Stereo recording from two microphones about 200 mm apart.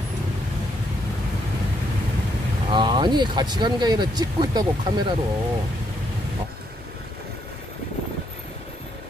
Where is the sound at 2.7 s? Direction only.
20° right (ahead or behind).